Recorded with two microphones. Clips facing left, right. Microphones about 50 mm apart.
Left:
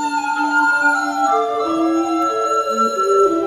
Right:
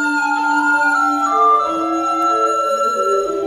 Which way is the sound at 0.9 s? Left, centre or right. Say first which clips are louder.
Right 1 dB; centre.